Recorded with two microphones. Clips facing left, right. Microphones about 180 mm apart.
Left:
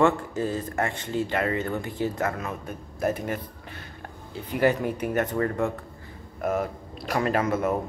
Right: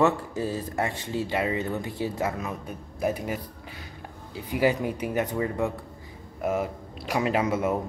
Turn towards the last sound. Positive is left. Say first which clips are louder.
# even
turn(degrees=-10)  # may be behind; listen again after turning